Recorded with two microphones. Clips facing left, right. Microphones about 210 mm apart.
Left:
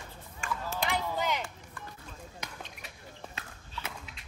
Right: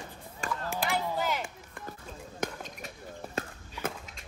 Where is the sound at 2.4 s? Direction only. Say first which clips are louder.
Right 12 dB; 45° right (ahead or behind).